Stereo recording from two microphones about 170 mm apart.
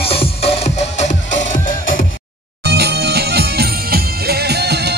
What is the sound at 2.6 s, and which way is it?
Music, 75° right (ahead or behind).